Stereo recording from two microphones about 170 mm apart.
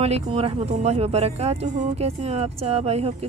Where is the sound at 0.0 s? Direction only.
35° right (ahead or behind).